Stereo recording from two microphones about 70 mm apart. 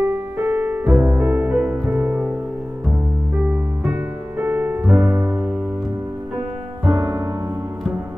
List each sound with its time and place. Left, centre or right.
0.0 s music: right
4.4 s music: right
6.9 s music: right